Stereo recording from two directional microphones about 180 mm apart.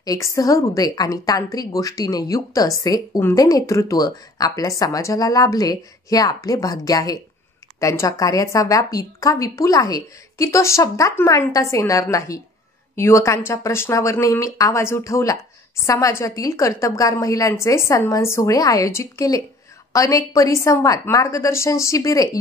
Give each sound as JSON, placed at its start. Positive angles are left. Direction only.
{"t": 0.0, "sound": "a woman's voice", "side_deg": 20}